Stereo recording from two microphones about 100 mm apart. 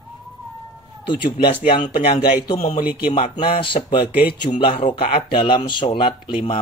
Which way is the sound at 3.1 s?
65° left (ahead or behind).